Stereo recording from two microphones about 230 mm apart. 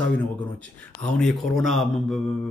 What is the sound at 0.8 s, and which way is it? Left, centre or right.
Speech, centre.